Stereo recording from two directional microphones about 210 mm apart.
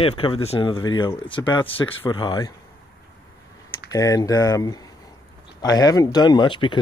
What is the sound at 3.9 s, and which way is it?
Speech, 15° left (ahead or behind).